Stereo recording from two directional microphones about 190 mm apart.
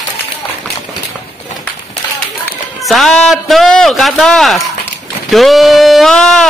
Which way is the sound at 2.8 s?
Centre (ahead or behind).